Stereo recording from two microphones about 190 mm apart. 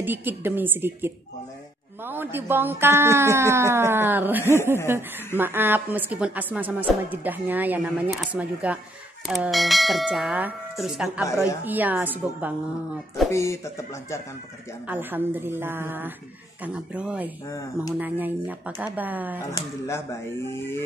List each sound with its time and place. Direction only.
0.0 s a woman's voice: 10° right (ahead or behind)
11.2 s speech: 15° left (ahead or behind)
11.6 s a woman's voice: 10° right (ahead or behind)
13.3 s speech: 15° left (ahead or behind)
14.9 s a woman's voice: 10° right (ahead or behind)
19.5 s speech: 15° left (ahead or behind)